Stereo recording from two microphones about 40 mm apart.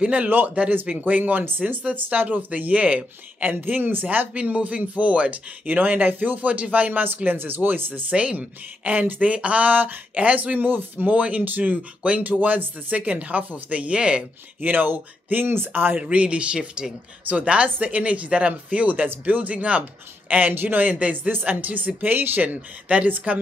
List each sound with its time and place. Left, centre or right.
0.8 s speech: right
3.6 s speech: right
4.3 s speech: right
5.7 s speech: right
8.1 s speech: right
10.6 s speech: right
11.1 s speech: right
14.6 s speech: right
15.4 s speech: right
16.0 s speech: right
16.5 s speech: centre
17.3 s speech: right
20.9 s speech: right
22.4 s speech: right